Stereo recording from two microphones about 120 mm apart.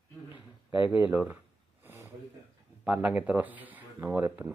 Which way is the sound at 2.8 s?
10° right (ahead or behind).